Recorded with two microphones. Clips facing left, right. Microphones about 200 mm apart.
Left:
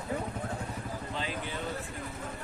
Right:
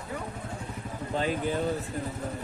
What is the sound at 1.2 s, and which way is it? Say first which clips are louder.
Speech: right 11 dB; 45° right (ahead or behind).